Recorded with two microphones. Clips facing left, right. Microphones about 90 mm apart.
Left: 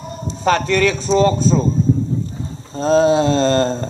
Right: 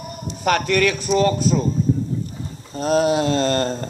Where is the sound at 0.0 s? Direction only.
30° left (ahead or behind).